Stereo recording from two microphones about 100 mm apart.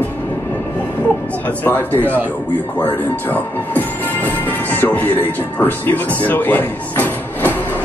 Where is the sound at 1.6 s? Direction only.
20° left (ahead or behind).